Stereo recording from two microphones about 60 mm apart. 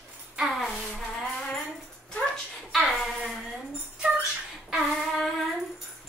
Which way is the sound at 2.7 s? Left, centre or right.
Centre.